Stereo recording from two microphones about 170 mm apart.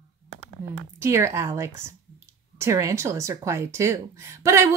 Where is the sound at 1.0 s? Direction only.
15° right (ahead or behind).